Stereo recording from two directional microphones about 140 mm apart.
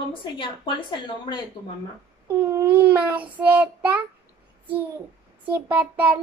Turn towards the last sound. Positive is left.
turn(degrees=-10)  # may be behind; listen again after turning